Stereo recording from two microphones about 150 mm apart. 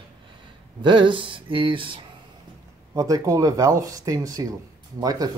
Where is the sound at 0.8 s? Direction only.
35° right (ahead or behind).